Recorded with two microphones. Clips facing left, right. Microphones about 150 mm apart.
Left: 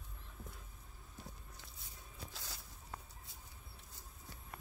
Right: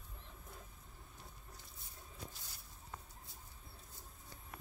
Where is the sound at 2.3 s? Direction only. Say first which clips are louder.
Left 5 dB; 90° left.